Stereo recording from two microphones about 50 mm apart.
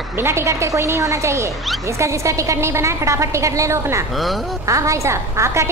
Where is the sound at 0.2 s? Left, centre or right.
Right.